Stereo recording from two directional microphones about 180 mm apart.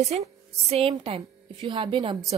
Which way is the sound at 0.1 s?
35° right (ahead or behind).